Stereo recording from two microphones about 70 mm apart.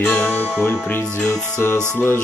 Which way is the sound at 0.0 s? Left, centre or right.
Left.